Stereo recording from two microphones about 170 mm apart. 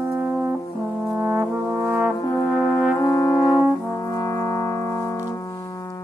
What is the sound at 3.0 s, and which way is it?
Brass instrument, 20° left (ahead or behind).